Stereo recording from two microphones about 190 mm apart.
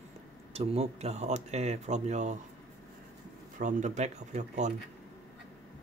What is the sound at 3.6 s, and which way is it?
Speech, 40° right (ahead or behind).